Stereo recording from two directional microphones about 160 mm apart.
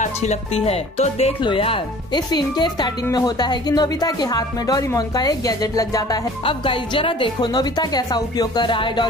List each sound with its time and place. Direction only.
0.0 s speech: 45° left (ahead or behind)
1.4 s speech: 35° left (ahead or behind)